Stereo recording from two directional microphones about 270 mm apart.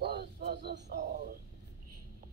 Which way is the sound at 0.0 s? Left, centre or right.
Right.